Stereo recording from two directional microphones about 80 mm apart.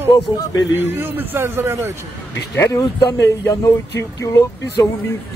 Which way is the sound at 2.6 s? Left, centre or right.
Left.